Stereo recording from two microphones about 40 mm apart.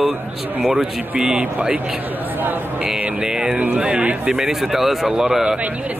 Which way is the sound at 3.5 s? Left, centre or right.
Right.